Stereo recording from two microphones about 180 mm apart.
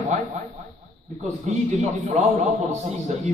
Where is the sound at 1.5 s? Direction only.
40° right (ahead or behind).